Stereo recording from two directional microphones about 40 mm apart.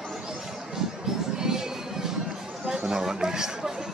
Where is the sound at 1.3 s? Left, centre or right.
Centre.